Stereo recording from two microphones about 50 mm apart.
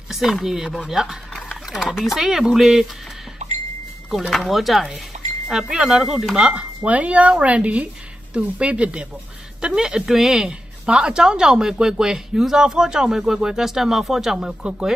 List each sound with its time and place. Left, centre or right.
0.1 s a woman's voice: centre
1.5 s a sound: centre
1.9 s a woman's voice: centre
4.3 s a woman's voice: centre
6.3 s a woman's voice: centre